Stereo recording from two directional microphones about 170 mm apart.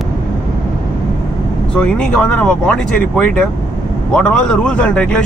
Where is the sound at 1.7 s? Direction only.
5° left (ahead or behind).